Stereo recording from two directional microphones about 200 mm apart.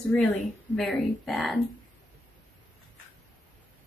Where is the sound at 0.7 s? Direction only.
Centre (ahead or behind).